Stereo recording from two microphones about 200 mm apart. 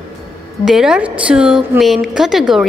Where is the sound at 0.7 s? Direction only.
5° right (ahead or behind).